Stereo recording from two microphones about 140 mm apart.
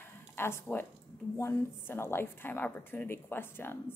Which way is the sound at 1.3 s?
15° left (ahead or behind).